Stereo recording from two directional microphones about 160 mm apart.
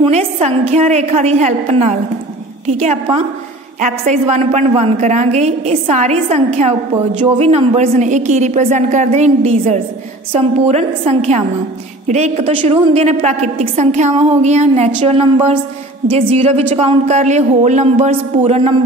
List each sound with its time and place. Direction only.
0.0 s a woman's voice: 40° right (ahead or behind)